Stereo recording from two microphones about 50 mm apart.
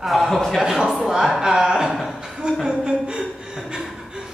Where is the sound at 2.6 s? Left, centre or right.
Centre.